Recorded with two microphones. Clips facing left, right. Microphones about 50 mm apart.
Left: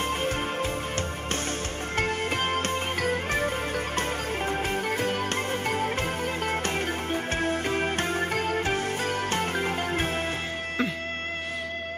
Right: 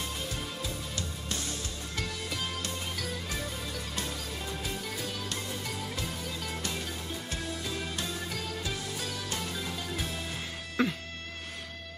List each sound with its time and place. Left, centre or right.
2.0 s music: left
10.8 s music: centre